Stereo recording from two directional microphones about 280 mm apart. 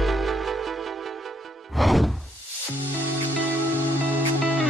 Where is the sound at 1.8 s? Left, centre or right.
Centre.